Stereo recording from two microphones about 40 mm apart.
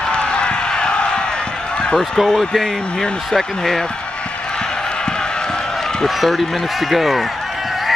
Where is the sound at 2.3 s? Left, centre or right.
Centre.